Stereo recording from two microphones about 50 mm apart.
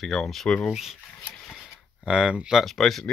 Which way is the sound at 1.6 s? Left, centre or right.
Centre.